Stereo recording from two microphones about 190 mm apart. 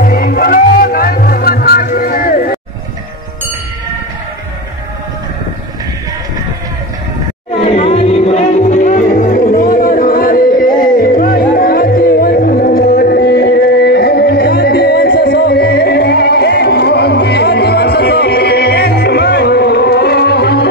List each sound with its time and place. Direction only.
0.0 s music: 50° left (ahead or behind)
7.7 s music: 30° left (ahead or behind); by 20.6 s 60° left (ahead or behind)